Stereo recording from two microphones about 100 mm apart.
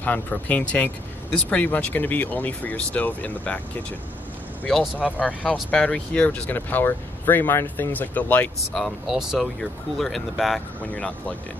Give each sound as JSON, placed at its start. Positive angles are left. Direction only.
{"t": 0.0, "sound": "speech", "side_deg": 15}
{"t": 4.6, "sound": "speech", "side_deg": 10}
{"t": 8.7, "sound": "speech", "side_deg": 0}
{"t": 10.8, "sound": "speech", "side_deg": 15}